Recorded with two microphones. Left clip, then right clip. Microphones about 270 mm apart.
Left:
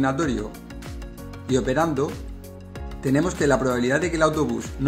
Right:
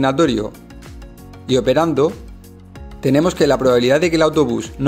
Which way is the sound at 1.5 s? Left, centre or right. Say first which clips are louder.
Right 7 dB; right.